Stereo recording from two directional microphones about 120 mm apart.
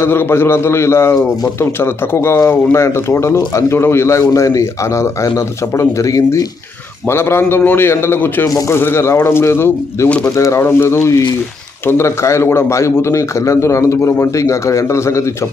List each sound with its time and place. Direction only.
0.0 s speech: 20° left (ahead or behind)